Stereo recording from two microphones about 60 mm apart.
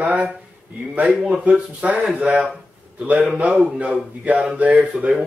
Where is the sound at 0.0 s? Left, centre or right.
Right.